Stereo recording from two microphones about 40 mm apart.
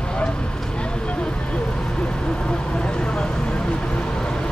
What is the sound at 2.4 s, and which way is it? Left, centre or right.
Vehicle, left.